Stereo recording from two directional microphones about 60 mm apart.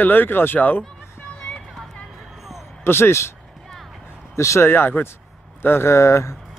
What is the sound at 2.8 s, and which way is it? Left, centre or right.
Speech, left.